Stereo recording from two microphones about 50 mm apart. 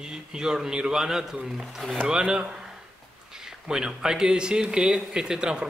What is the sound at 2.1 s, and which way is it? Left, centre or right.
A man's voice, centre.